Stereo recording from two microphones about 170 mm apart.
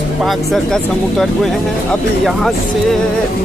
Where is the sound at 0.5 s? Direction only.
Centre (ahead or behind).